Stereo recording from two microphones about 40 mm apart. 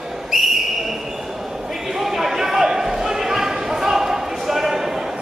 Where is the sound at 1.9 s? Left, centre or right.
Centre.